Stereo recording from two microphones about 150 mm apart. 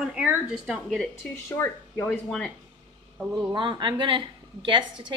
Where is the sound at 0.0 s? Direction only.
5° right (ahead or behind).